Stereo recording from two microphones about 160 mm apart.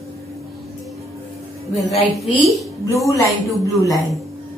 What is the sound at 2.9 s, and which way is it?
A woman's voice, 20° left (ahead or behind).